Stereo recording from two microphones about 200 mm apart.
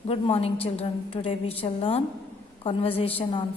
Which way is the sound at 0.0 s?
30° left (ahead or behind).